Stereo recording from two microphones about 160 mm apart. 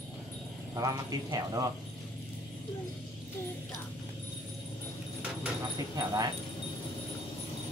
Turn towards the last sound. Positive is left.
turn(degrees=-20)  # may be behind; listen again after turning